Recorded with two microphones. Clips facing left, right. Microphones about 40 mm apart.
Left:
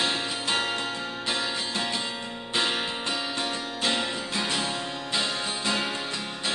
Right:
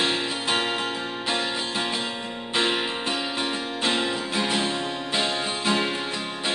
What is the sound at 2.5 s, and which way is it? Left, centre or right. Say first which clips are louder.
Music: right 3 dB; centre.